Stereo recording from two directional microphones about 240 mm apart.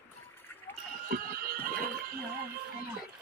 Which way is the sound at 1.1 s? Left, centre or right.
Right.